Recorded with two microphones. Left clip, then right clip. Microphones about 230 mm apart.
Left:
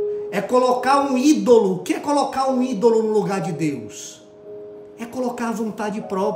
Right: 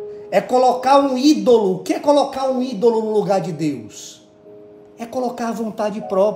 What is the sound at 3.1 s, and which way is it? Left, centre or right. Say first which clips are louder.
Speech: right 3 dB; centre.